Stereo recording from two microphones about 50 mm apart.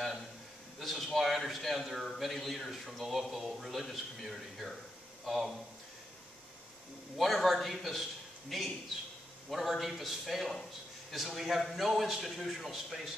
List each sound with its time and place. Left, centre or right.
0.7 s a man's voice: centre
7.2 s a man's voice: centre